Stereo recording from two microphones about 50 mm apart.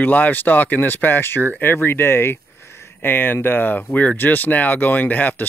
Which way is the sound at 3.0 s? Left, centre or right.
Left.